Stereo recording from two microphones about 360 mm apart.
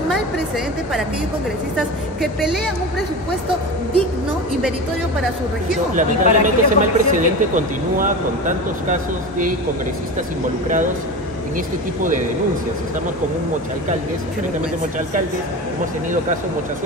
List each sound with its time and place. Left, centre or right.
5.9 s speech: right